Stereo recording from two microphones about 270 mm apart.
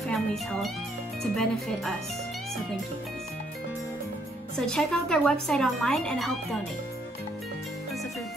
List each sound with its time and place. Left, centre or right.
0.1 s speech: centre
4.6 s speech: centre